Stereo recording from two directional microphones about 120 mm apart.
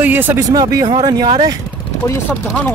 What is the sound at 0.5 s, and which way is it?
Speech, 35° right (ahead or behind).